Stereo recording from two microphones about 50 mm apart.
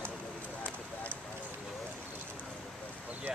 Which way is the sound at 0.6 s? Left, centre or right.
Left.